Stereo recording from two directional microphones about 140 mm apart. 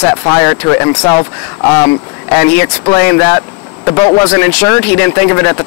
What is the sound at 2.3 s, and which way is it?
A man's voice, 15° left (ahead or behind).